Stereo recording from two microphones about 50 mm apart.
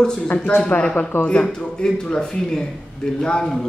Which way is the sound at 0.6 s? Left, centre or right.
Left.